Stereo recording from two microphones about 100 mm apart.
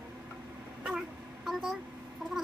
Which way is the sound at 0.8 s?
5° right (ahead or behind).